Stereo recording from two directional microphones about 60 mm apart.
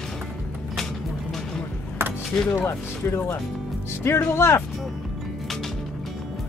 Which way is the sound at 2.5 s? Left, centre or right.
Left.